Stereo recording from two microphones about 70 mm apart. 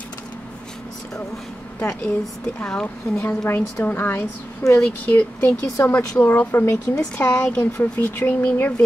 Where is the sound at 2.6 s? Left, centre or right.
Centre.